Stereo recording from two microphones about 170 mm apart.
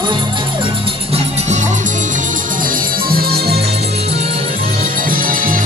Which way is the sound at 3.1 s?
65° right (ahead or behind).